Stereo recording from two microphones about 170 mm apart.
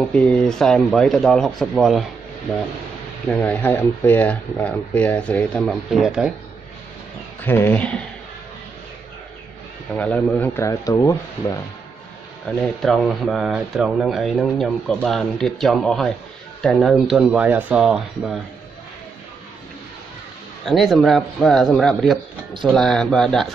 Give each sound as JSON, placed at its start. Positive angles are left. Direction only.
{"t": 0.1, "sound": "speech", "side_deg": 5}
{"t": 3.3, "sound": "speech", "side_deg": 5}
{"t": 7.4, "sound": "speech", "side_deg": 15}
{"t": 9.9, "sound": "speech", "side_deg": 10}
{"t": 12.4, "sound": "speech", "side_deg": 0}
{"t": 20.6, "sound": "speech", "side_deg": 0}